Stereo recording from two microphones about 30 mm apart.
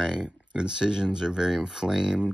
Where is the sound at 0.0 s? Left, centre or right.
Right.